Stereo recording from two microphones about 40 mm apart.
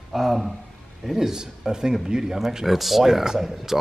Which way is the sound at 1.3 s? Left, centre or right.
Centre.